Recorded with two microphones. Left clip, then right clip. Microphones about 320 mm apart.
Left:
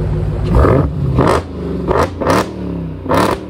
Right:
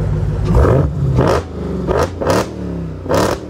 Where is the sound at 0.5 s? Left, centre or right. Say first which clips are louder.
Left 2 dB; left.